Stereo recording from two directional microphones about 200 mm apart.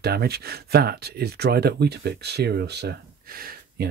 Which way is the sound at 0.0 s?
50° right (ahead or behind).